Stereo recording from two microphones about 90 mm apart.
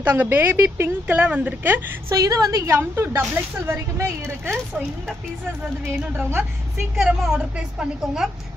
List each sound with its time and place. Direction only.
0.0 s a woman's voice: 25° right (ahead or behind)
2.1 s a woman's voice: 40° right (ahead or behind)
2.7 s a woman's voice: 25° right (ahead or behind)
7.0 s a woman's voice: 10° right (ahead or behind)